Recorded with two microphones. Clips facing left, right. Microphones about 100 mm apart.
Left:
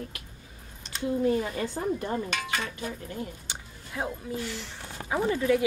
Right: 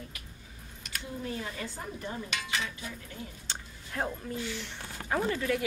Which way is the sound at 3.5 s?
15° left (ahead or behind).